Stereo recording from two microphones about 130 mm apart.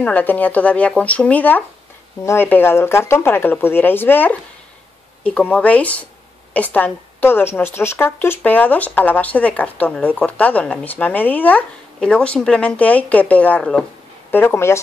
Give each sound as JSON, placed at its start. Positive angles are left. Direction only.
{"t": 0.0, "sound": "a woman's voice", "side_deg": 15}
{"t": 14.3, "sound": "speech", "side_deg": 20}